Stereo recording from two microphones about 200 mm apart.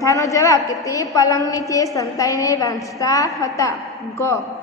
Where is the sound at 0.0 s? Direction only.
15° left (ahead or behind).